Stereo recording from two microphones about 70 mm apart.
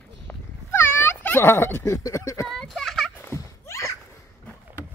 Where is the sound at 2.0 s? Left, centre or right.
Left.